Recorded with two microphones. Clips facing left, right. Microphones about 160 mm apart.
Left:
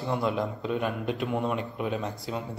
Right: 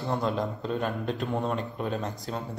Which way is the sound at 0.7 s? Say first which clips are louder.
Left 1 dB; 15° left (ahead or behind).